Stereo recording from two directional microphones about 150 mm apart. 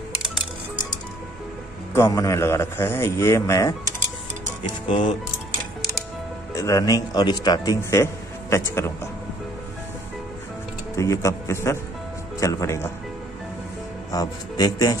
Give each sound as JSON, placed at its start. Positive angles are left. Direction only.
{"t": 2.0, "sound": "speech", "side_deg": 20}
{"t": 6.5, "sound": "speech", "side_deg": 20}
{"t": 11.0, "sound": "speech", "side_deg": 20}
{"t": 14.1, "sound": "speech", "side_deg": 25}